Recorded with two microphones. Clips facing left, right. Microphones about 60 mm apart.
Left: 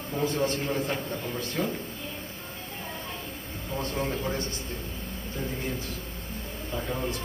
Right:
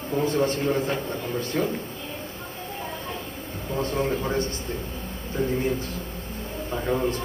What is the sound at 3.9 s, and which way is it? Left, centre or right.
Speech, right.